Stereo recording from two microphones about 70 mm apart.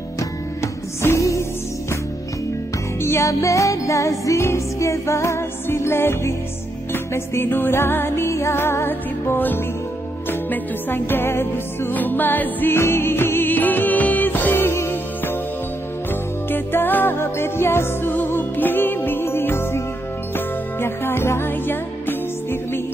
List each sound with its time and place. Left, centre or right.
0.6 s music: left
3.0 s music: left
12.7 s music: left